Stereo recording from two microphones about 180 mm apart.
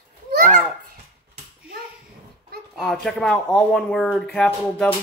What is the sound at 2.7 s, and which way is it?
Speech, centre (ahead or behind).